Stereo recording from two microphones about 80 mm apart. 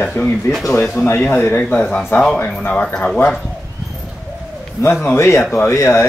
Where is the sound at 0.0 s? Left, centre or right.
Left.